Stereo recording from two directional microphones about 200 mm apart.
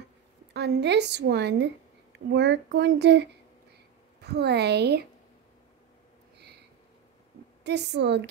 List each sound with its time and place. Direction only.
0.5 s a woman's voice: 55° right (ahead or behind)
7.6 s a woman's voice: 60° right (ahead or behind)